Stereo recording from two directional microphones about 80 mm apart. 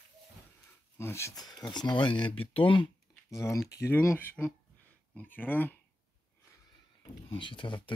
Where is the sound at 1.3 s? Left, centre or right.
Left.